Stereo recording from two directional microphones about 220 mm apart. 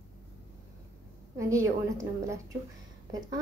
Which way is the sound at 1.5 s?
15° right (ahead or behind).